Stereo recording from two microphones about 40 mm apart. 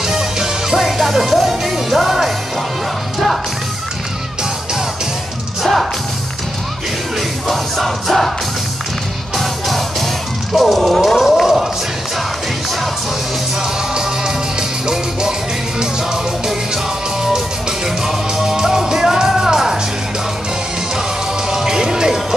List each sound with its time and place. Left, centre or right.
0.0 s music: centre
5.6 s music: centre
7.2 s music: centre
9.4 s music: centre
10.5 s speech: centre
11.1 s a sound: centre
16.4 s music: centre
21.5 s music: centre